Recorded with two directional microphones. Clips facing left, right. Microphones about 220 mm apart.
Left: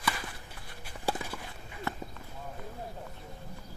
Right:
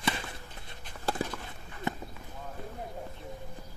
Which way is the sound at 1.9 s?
20° right (ahead or behind).